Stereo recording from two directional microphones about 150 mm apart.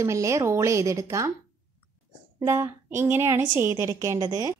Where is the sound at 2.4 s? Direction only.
20° right (ahead or behind).